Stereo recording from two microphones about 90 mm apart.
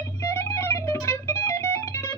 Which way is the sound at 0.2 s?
30° left (ahead or behind).